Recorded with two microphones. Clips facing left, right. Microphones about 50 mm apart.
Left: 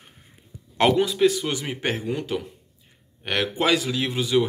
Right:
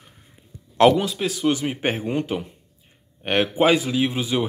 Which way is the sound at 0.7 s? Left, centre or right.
Centre.